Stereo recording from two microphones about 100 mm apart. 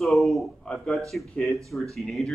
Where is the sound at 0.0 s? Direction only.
Centre (ahead or behind).